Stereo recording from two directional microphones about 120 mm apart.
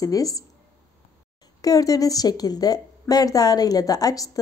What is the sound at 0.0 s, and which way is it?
Speech, 30° left (ahead or behind).